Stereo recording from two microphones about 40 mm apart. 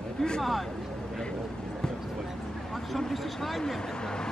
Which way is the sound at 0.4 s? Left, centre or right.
Centre.